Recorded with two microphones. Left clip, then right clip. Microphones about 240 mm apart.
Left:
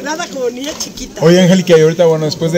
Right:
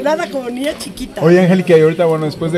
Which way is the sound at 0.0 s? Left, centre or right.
Right.